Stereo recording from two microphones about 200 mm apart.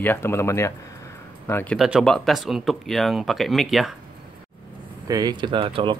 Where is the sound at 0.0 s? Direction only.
10° left (ahead or behind).